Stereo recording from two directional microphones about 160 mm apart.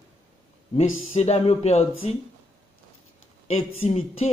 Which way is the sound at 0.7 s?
45° left (ahead or behind).